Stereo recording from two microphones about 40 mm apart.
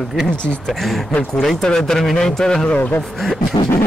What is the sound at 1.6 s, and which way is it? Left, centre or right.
Music, centre.